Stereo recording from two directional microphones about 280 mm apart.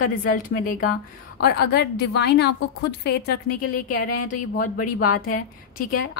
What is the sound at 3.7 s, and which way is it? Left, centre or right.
Speech, left.